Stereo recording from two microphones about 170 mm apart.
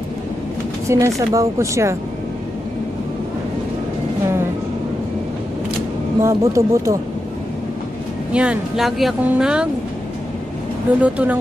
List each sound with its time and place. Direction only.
0.8 s speech: 15° right (ahead or behind)
6.2 s speech: 20° right (ahead or behind)
8.3 s speech: 5° right (ahead or behind)
11.0 s speech: 10° right (ahead or behind)